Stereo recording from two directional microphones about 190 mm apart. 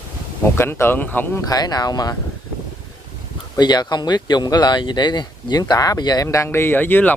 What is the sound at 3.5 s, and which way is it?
Speech, 20° left (ahead or behind).